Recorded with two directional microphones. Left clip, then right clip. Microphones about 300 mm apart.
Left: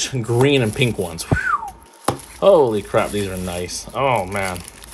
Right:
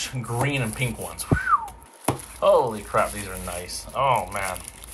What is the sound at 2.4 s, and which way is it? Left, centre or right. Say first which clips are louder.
Speech: left 6 dB; left.